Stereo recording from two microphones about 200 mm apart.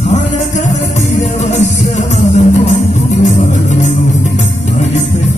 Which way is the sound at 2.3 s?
35° left (ahead or behind).